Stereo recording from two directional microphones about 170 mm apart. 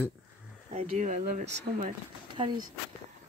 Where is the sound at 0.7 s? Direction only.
45° right (ahead or behind).